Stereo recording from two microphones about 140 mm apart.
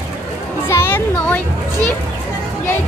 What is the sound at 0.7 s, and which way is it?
Children playing, 15° left (ahead or behind).